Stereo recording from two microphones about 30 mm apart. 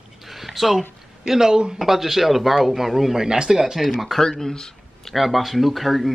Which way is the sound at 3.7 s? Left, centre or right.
Centre.